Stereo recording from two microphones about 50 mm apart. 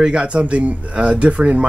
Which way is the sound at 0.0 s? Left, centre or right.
Centre.